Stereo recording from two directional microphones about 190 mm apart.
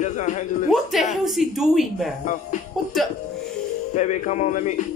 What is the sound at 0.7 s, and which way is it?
Speech, centre (ahead or behind).